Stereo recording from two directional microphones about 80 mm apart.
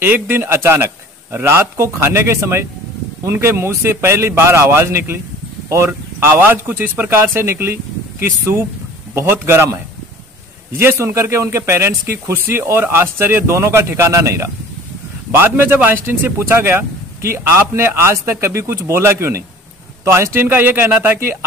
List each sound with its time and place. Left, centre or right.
0.0 s a man's voice: right
10.8 s a man's voice: right
15.3 s a man's voice: right